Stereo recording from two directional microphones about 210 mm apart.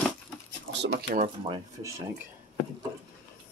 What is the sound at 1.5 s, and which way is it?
Speech, 15° right (ahead or behind).